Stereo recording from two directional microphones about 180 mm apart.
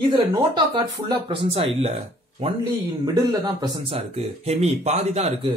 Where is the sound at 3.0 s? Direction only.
20° right (ahead or behind).